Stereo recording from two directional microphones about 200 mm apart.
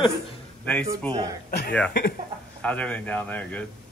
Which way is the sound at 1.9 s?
50° left (ahead or behind).